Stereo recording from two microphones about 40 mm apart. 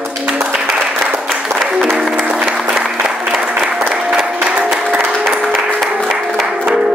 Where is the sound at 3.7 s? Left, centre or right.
Right.